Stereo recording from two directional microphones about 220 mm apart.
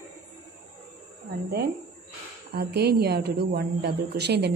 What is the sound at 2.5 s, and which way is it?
A woman's voice, 45° right (ahead or behind).